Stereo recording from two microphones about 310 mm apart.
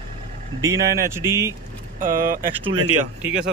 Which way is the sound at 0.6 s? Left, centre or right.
Centre.